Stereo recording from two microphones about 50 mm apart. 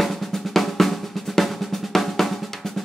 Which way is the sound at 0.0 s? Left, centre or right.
Centre.